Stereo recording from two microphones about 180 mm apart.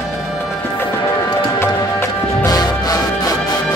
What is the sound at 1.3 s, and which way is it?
Music, 15° left (ahead or behind).